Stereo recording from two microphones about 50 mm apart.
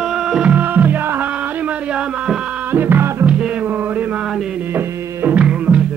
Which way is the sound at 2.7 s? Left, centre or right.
Right.